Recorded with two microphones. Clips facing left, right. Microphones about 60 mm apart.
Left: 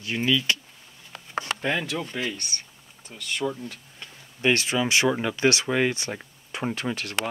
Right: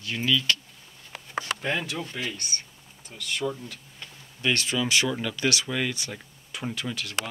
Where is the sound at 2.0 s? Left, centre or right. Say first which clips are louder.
Left 3 dB; centre.